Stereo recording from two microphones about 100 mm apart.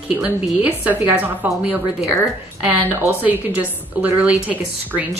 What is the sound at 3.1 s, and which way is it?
A woman's voice, 15° right (ahead or behind).